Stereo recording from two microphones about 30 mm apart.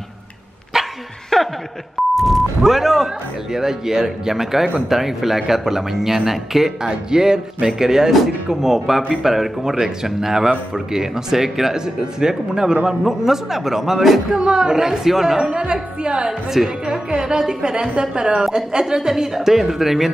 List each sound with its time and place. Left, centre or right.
0.7 s dog: centre
1.3 s chuckle: centre
2.1 s speech: centre
6.8 s speech: right
11.8 s speech: right
12.8 s speech: centre
14.3 s speech: right
15.0 s speech: centre
15.5 s speech: right
16.3 s speech: centre